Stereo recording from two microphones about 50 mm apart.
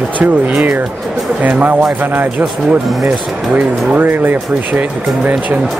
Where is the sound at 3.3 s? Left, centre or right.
Centre.